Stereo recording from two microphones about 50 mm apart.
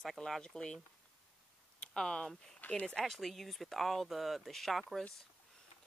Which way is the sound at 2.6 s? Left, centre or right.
Left.